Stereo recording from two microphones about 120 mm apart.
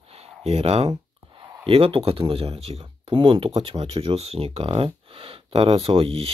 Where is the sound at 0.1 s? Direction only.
60° right (ahead or behind).